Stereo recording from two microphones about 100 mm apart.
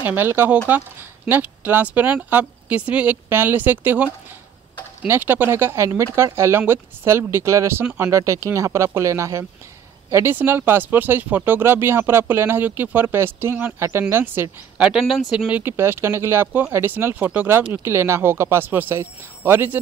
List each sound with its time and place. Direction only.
0.0 s speech: 20° right (ahead or behind)
14.8 s speech: 5° right (ahead or behind)
15.6 s speech: 25° right (ahead or behind)